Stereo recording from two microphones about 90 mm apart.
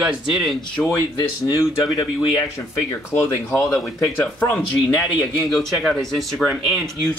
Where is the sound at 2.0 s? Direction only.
50° left (ahead or behind).